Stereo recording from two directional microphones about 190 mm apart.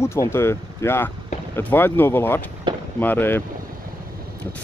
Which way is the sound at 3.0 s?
10° left (ahead or behind).